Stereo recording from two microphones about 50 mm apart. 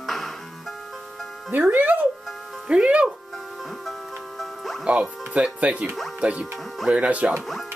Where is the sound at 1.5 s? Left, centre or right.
Right.